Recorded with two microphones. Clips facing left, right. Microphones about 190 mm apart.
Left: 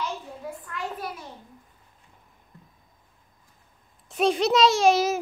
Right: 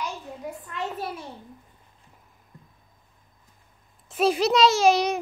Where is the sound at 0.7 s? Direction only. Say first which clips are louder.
Right 3 dB; 25° right (ahead or behind).